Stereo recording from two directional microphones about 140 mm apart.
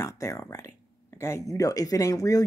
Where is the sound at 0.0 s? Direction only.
20° left (ahead or behind).